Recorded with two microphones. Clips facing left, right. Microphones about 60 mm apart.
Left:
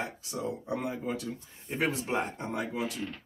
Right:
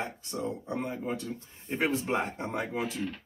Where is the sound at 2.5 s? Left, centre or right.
Right.